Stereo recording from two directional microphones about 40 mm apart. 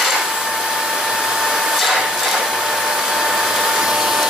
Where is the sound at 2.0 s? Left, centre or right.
Centre.